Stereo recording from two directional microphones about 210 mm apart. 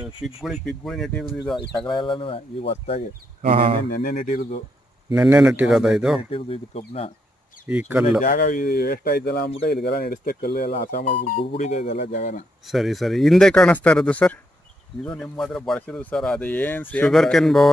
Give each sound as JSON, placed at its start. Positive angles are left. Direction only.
{"t": 0.0, "sound": "speech", "side_deg": 0}
{"t": 1.9, "sound": "speech", "side_deg": 25}
{"t": 3.4, "sound": "speech", "side_deg": -25}
{"t": 3.9, "sound": "speech", "side_deg": 45}
{"t": 5.1, "sound": "speech", "side_deg": -5}
{"t": 6.3, "sound": "speech", "side_deg": 25}
{"t": 7.6, "sound": "speech", "side_deg": -5}
{"t": 8.2, "sound": "speech", "side_deg": 40}
{"t": 12.7, "sound": "speech", "side_deg": 0}